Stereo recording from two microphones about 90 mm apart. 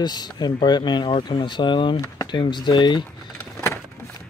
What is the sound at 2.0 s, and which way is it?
Speech, 50° left (ahead or behind).